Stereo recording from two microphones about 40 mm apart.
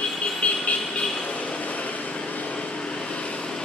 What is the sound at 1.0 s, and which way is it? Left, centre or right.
Vehicle, centre.